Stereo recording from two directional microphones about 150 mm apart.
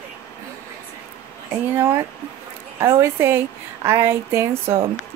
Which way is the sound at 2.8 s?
20° right (ahead or behind).